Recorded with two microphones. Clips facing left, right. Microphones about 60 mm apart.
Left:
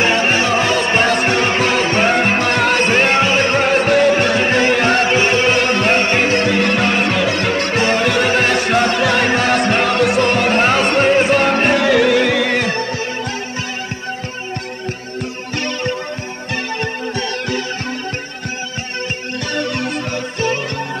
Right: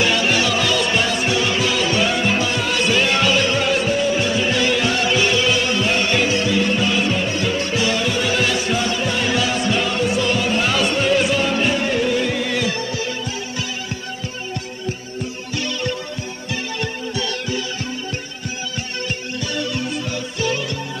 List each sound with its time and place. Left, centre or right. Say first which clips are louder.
0.0 s music: left 3 dB; left
3.9 s music: left 6 dB; left
7.2 s music: left 4 dB; left
7.8 s music: left 6 dB; left
11.8 s music: left 7 dB; left
12.5 s music: left 4 dB; left
15.6 s music: left 3 dB; left
19.5 s music: left 4 dB; left